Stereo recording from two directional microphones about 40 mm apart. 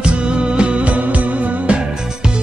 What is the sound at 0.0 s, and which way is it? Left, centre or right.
Music, right.